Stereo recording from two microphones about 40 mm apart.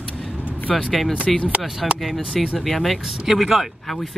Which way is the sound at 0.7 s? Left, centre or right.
Centre.